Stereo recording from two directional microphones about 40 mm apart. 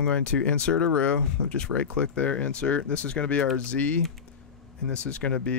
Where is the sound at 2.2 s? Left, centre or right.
Left.